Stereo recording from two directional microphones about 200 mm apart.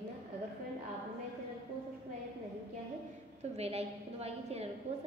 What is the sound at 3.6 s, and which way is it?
A woman's voice, 30° right (ahead or behind).